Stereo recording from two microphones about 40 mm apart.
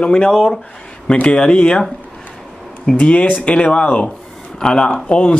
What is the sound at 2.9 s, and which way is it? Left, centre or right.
Speech, left.